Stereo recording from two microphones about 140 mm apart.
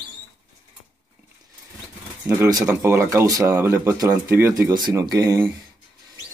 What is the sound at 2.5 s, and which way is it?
Speech, 25° right (ahead or behind).